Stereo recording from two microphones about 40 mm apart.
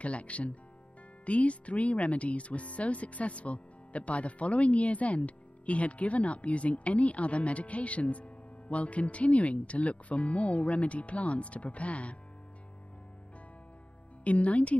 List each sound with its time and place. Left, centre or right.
0.0 s speech: left
14.2 s speech: left